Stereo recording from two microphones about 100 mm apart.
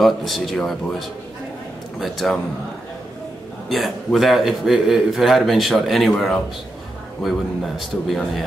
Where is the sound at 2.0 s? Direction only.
Centre (ahead or behind).